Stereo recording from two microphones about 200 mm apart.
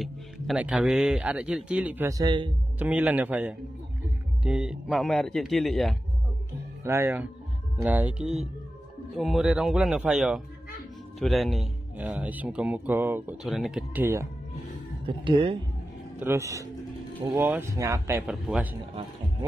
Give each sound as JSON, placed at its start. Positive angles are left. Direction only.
{"t": 0.0, "sound": "speech", "side_deg": -5}
{"t": 2.8, "sound": "speech", "side_deg": -10}
{"t": 6.8, "sound": "speech", "side_deg": -15}
{"t": 15.0, "sound": "speech", "side_deg": -25}
{"t": 16.2, "sound": "speech", "side_deg": -15}
{"t": 18.2, "sound": "speech", "side_deg": -5}